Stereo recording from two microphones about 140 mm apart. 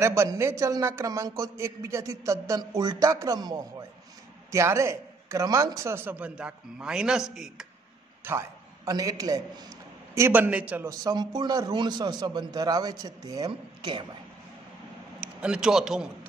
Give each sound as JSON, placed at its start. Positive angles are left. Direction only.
{"t": 0.0, "sound": "a man's voice", "side_deg": -20}
{"t": 8.2, "sound": "a man's voice", "side_deg": -20}
{"t": 10.9, "sound": "a man's voice", "side_deg": -25}
{"t": 15.4, "sound": "a man's voice", "side_deg": -5}